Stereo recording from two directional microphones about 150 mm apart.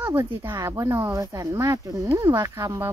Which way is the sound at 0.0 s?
15° right (ahead or behind).